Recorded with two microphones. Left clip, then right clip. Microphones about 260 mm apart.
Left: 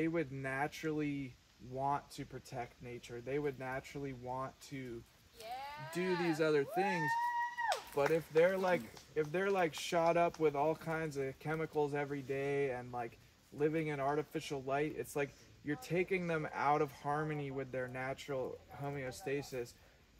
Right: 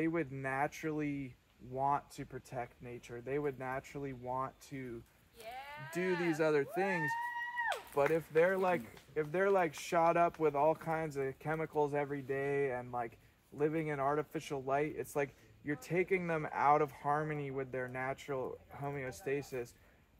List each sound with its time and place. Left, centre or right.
0.0 s speech: centre
5.5 s speech: centre
6.4 s speech: centre